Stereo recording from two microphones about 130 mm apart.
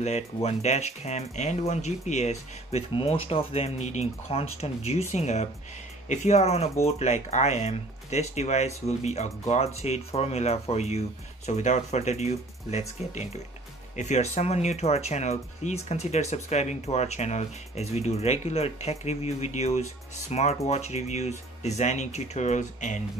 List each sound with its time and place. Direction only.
0.0 s speech: 55° left (ahead or behind)
3.0 s speech: 45° left (ahead or behind); by 23.0 s 70° left (ahead or behind)